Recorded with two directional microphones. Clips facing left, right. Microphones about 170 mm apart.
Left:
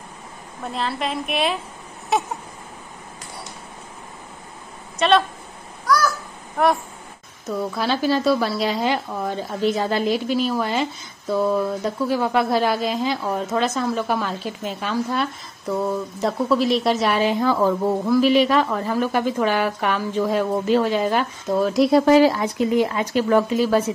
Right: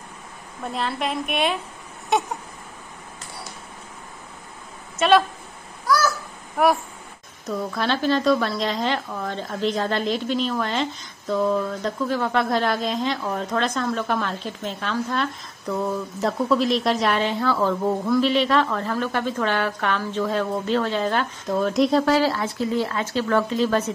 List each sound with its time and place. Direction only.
0.7 s a woman's voice: centre (ahead or behind)
4.9 s a woman's voice: centre (ahead or behind)
6.6 s a woman's voice: 5° right (ahead or behind)
22.0 s a woman's voice: 15° left (ahead or behind)